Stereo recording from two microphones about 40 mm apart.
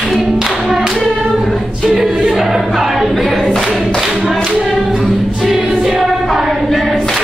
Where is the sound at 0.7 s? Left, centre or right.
Centre.